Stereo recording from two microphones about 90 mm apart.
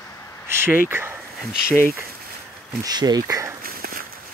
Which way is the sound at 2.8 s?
45° right (ahead or behind).